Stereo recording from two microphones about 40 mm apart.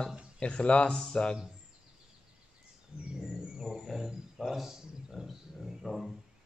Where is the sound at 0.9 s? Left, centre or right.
Centre.